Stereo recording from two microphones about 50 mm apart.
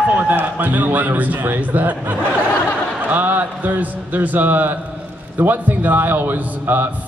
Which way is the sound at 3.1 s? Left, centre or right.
Right.